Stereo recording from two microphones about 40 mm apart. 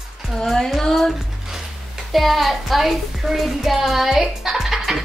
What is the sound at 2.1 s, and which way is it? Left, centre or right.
Music, centre.